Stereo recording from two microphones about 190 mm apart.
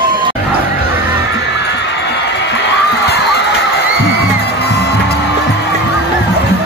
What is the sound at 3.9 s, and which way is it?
Music, 60° left (ahead or behind).